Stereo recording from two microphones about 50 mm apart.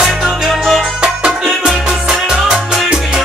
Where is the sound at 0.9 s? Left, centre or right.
Centre.